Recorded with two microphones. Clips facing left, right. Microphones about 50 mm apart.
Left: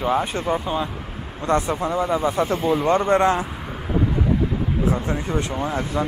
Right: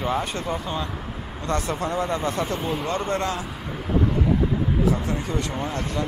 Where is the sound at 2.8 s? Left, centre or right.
Left.